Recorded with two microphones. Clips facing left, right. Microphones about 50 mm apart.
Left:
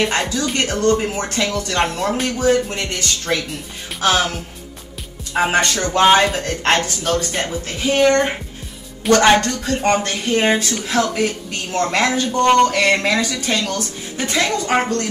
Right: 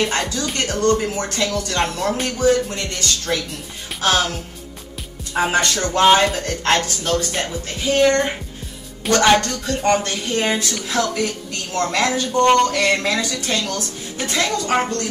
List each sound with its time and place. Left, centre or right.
0.0 s a woman's voice: left
4.0 s a woman's voice: centre
7.3 s speech: centre
7.8 s a woman's voice: left
9.0 s speech: centre
10.0 s a woman's voice: left
12.3 s speech: centre
12.7 s a woman's voice: left